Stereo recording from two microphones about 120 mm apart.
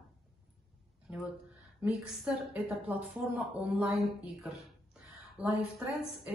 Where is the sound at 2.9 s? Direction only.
15° right (ahead or behind).